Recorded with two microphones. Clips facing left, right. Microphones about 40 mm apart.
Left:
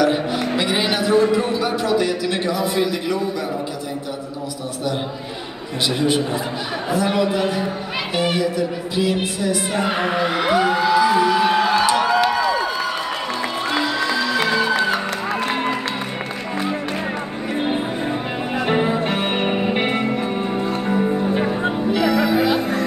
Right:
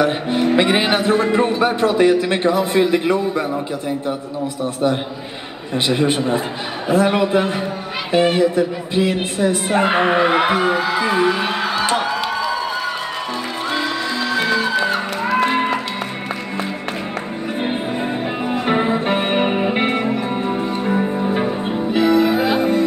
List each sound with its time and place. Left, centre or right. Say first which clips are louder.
0.0 s speech: right 1 dB; right
5.9 s speech: right 2 dB; right
13.7 s music: left 1 dB; centre
18.7 s music: right 2 dB; centre
21.9 s music: right 4 dB; right